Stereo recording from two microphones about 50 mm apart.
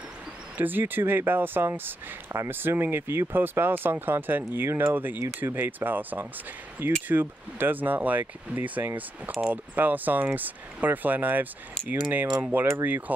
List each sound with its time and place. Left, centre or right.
0.6 s speech: right
2.3 s speech: right
2.7 s speech: right